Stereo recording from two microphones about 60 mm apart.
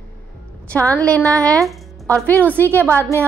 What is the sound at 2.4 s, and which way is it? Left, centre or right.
Speech, left.